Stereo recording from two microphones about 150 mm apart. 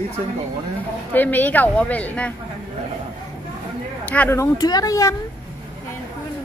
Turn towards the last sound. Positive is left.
turn(degrees=20)  # may be behind; listen again after turning